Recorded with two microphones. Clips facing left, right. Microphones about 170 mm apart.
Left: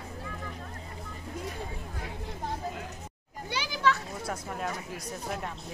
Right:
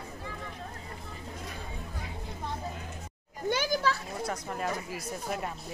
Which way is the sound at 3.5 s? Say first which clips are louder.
Even; 45° right (ahead or behind).